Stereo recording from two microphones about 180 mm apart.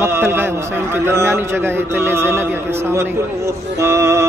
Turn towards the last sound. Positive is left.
turn(degrees=-15)  # may be behind; listen again after turning